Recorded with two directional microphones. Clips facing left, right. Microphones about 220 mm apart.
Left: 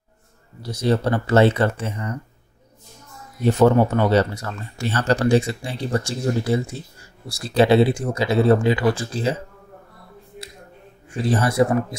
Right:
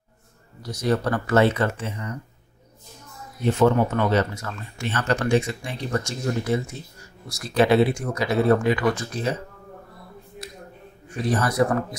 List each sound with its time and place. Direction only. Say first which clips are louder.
0.7 s speech: left 3 dB; 25° left (ahead or behind)
3.5 s speech: left 3 dB; 35° left (ahead or behind)
11.2 s speech: left 3 dB; 25° left (ahead or behind)